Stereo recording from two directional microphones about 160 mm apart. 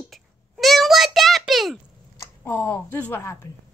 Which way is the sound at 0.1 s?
Centre (ahead or behind).